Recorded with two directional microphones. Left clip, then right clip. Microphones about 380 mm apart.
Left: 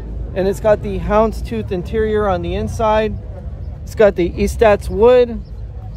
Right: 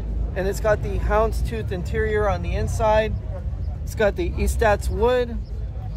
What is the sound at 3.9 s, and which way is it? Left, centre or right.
Speech, left.